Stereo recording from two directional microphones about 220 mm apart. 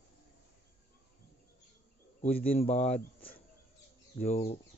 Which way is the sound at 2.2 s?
25° left (ahead or behind).